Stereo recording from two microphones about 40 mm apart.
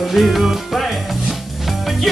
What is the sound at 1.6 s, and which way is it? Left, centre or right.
Music, centre.